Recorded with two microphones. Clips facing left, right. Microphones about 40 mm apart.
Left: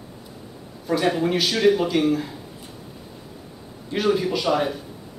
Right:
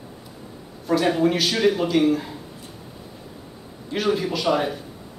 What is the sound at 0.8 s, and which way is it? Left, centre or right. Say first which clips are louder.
Speech: right 2 dB; centre.